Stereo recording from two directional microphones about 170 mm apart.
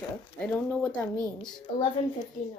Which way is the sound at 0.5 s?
10° left (ahead or behind).